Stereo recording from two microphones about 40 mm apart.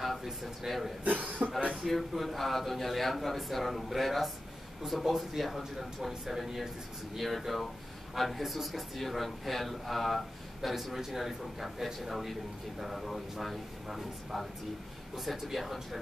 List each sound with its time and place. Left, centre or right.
0.0 s speech: centre
1.0 s speech: right
1.8 s speech: centre